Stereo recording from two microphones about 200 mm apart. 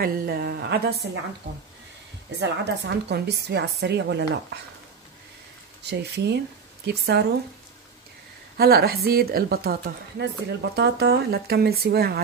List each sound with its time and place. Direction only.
0.0 s a woman's voice: 55° right (ahead or behind)
5.9 s a woman's voice: 55° right (ahead or behind)
8.5 s speech: 50° right (ahead or behind)